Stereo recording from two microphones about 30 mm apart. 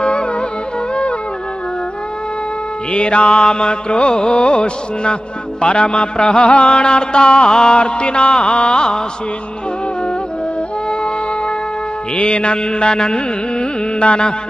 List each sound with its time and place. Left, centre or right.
0.0 s music: left
2.9 s mantra: left
6.4 s a sound: left
6.7 s music: left
7.7 s mantra: left
12.2 s carnatic music: left